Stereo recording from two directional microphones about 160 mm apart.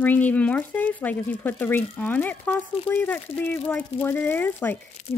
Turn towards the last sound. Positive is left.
turn(degrees=45)  # may be behind; listen again after turning